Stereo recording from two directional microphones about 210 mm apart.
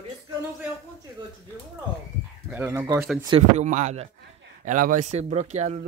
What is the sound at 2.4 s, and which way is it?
Speech, 10° right (ahead or behind).